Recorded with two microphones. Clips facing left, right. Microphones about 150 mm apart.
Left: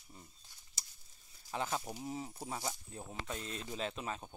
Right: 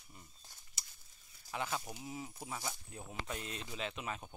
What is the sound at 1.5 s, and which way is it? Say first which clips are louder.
Speech: left 2 dB; 30° left (ahead or behind).